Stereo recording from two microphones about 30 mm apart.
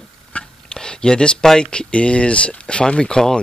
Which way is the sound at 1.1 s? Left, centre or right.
Left.